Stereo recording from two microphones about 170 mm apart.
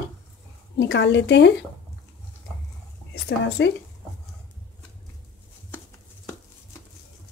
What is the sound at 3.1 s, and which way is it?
Speech, 90° left.